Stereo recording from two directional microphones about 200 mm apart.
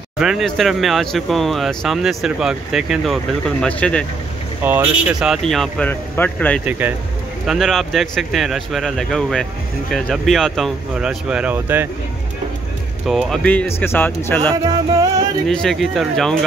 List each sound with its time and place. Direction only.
0.2 s speech: centre (ahead or behind)
4.6 s speech: 10° right (ahead or behind)
13.0 s speech: centre (ahead or behind)
14.5 s music: 20° right (ahead or behind)
15.4 s speech: centre (ahead or behind)